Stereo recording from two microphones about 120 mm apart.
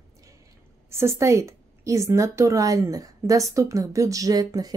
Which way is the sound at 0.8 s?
20° right (ahead or behind).